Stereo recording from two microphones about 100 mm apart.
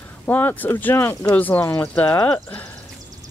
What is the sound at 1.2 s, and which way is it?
Speech, 15° left (ahead or behind).